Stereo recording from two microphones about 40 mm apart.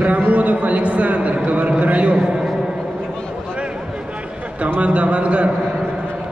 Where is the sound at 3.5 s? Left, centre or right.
Right.